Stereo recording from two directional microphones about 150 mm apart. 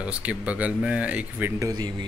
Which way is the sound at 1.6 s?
25° right (ahead or behind).